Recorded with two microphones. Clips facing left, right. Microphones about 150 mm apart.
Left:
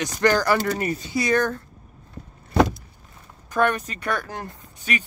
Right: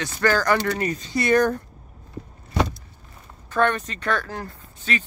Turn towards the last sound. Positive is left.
turn(degrees=15)  # may be behind; listen again after turning